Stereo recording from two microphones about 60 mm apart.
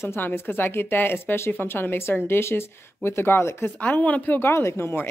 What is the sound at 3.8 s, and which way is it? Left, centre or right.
Speech, left.